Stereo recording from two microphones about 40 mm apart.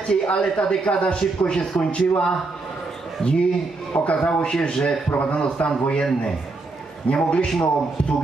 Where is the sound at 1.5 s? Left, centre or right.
Centre.